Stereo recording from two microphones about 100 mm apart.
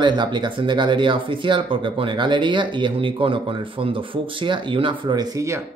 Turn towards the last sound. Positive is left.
turn(degrees=-30)  # may be behind; listen again after turning